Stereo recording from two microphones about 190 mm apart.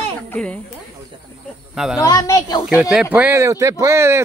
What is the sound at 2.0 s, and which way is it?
Speech, 20° left (ahead or behind).